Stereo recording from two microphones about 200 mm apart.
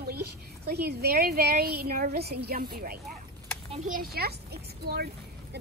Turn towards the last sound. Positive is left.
turn(degrees=-50)  # may be behind; listen again after turning